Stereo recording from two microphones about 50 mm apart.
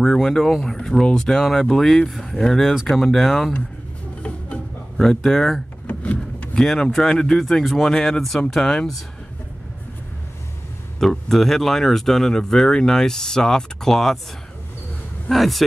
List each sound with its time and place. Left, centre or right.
0.0 s speech: centre
4.9 s speech: centre
6.6 s speech: centre
11.0 s speech: centre
15.2 s speech: centre